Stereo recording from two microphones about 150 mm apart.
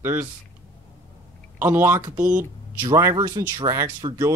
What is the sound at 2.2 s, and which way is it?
Speech, 60° right (ahead or behind).